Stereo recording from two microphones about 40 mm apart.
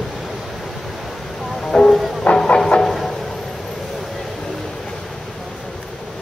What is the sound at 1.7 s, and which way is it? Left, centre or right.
Music, centre.